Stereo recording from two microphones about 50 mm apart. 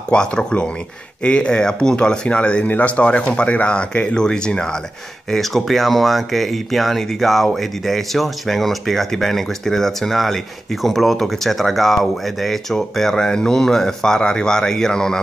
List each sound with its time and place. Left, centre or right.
0.1 s speech: centre
5.3 s speech: centre